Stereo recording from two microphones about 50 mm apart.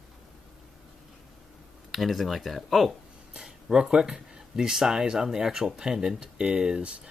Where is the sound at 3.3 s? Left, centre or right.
Centre.